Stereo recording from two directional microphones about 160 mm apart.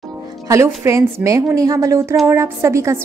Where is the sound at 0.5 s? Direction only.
20° right (ahead or behind).